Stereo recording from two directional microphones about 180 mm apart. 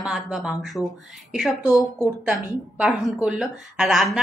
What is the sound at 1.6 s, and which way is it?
Speech, 20° left (ahead or behind).